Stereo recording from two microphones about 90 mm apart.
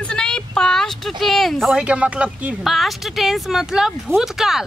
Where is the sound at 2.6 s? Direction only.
Centre (ahead or behind).